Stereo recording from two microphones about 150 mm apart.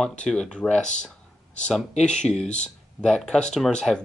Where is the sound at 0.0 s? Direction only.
5° left (ahead or behind).